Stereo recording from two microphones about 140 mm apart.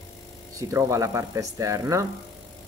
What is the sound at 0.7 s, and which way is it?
Speech, 20° right (ahead or behind).